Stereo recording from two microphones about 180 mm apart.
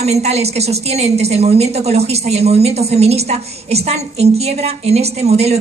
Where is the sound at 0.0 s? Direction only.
35° right (ahead or behind).